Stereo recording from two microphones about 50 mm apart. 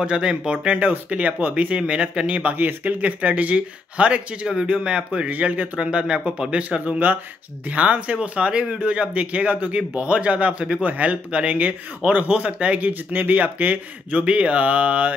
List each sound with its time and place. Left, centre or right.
0.0 s speech: centre
5.9 s speech: centre